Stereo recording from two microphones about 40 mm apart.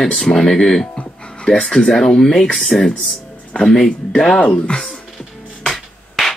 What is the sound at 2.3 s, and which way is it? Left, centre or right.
Speech, left.